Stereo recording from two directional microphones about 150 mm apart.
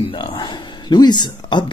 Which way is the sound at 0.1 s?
30° left (ahead or behind).